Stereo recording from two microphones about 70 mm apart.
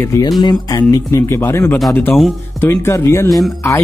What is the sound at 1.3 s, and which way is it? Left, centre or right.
Speech, left.